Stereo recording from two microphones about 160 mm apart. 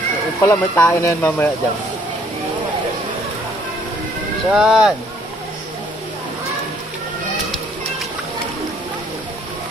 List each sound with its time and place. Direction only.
0.4 s speech: 15° left (ahead or behind)
4.5 s speech: 5° right (ahead or behind)